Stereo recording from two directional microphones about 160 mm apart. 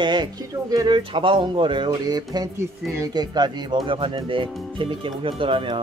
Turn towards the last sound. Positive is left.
turn(degrees=-30)  # may be behind; listen again after turning